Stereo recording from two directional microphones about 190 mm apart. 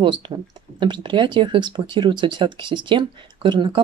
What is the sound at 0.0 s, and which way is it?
Speech, 25° right (ahead or behind).